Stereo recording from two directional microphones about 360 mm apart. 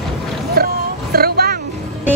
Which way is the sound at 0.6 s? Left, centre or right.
Right.